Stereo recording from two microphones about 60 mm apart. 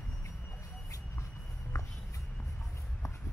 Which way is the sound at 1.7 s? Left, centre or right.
Left.